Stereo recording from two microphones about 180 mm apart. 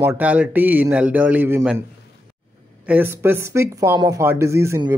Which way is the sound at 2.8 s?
10° right (ahead or behind).